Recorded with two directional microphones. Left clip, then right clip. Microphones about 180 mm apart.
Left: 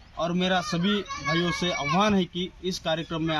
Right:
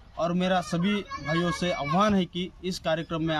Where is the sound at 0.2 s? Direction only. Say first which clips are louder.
Even; 25° right (ahead or behind).